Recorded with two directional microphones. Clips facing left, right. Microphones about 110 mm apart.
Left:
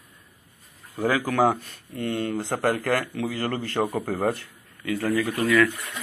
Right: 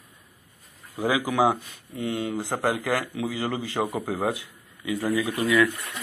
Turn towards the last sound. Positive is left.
turn(degrees=-15)  # may be behind; listen again after turning